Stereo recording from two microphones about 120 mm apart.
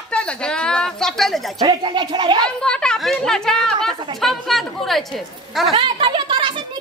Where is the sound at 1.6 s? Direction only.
35° right (ahead or behind).